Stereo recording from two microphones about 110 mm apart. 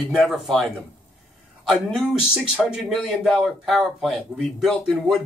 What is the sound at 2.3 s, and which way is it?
Speech, 5° right (ahead or behind).